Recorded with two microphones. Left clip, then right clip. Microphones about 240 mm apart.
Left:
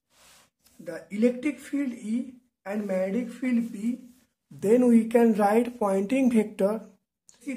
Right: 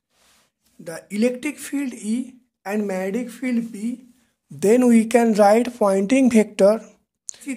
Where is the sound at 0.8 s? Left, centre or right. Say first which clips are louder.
Right 3 dB; right.